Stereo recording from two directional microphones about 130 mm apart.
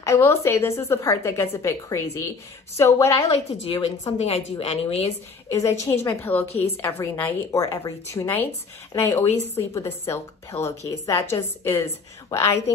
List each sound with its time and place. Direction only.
0.0 s a woman's voice: 20° left (ahead or behind)
3.3 s a woman's voice: 50° left (ahead or behind)
5.5 s a woman's voice: 20° left (ahead or behind)